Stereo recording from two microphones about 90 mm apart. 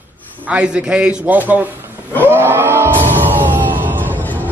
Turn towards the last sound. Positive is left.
turn(degrees=20)  # may be behind; listen again after turning